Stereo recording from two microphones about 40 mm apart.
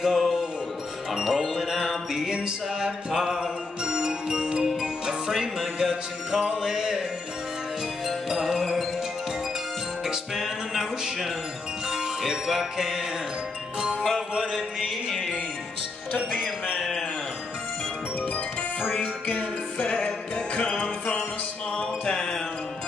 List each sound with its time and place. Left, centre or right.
0.0 s music: centre
8.1 s music: centre
10.0 s music: centre
14.0 s music: centre
15.0 s music: centre
18.2 s music: left
19.9 s music: left